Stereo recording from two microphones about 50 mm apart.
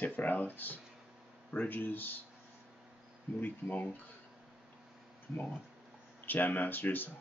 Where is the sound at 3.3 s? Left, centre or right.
Left.